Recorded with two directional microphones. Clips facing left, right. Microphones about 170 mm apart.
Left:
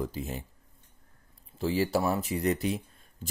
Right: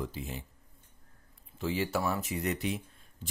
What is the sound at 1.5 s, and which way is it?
Speech, 35° left (ahead or behind).